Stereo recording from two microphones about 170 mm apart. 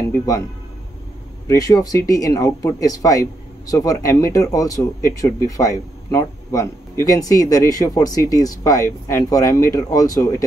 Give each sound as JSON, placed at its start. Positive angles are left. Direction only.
{"t": 1.5, "sound": "speech", "side_deg": 20}